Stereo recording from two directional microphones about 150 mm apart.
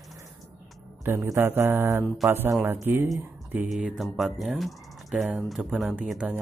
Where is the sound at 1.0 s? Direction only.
15° right (ahead or behind).